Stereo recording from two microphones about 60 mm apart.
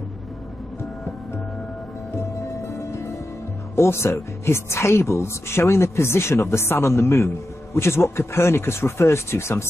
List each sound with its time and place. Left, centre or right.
2.1 s music: left
3.7 s speech: left